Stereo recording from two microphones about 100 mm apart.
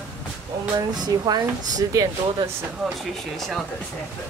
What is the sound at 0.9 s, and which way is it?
Speech, 40° right (ahead or behind).